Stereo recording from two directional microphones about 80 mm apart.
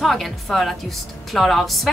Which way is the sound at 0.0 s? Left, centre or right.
Centre.